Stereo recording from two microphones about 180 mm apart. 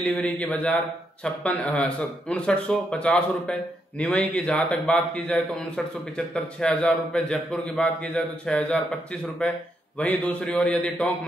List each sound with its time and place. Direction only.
0.1 s a man's voice: 10° left (ahead or behind)
9.9 s a man's voice: 5° left (ahead or behind)